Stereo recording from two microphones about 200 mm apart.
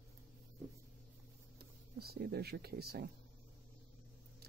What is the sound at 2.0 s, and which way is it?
Speech, 50° right (ahead or behind).